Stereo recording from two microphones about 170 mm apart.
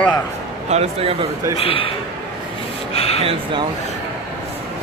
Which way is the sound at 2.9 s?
35° left (ahead or behind).